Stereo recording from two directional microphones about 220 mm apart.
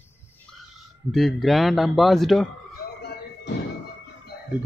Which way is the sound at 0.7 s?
Centre (ahead or behind).